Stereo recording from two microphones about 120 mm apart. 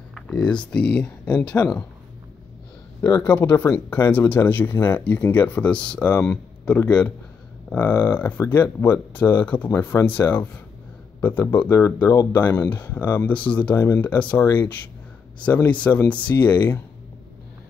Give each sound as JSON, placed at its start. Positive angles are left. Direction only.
{"t": 0.1, "sound": "speech", "side_deg": 5}
{"t": 3.3, "sound": "speech", "side_deg": 15}